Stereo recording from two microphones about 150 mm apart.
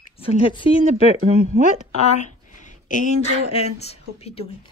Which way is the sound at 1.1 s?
55° right (ahead or behind).